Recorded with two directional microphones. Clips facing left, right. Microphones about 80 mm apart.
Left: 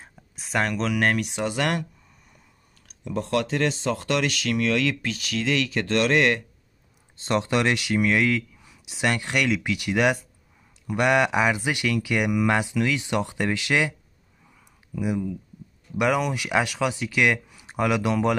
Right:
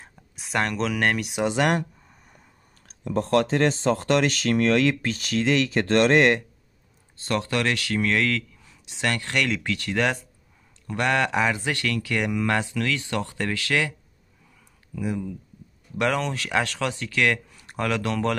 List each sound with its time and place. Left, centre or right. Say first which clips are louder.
0.0 s speech: even; centre
1.4 s speech: right 6 dB; right
2.9 s speech: right 3 dB; right
7.2 s speech: left 2 dB; left
15.0 s speech: left 2 dB; centre